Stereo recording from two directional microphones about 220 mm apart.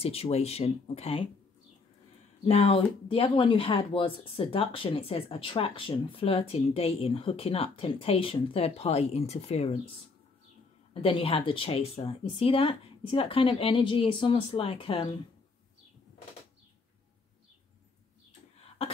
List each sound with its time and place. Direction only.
0.0 s speech: 25° left (ahead or behind)
2.4 s speech: 25° left (ahead or behind)
10.9 s speech: 25° left (ahead or behind)